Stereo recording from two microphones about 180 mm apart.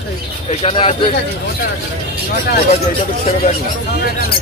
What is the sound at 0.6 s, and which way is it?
Speech, 30° left (ahead or behind).